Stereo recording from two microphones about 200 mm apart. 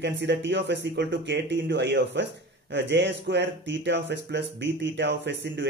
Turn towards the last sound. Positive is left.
turn(degrees=-60)  # may be behind; listen again after turning